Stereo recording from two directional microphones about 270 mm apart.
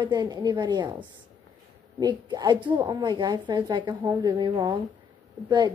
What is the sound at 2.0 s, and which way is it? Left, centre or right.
A woman's voice, centre.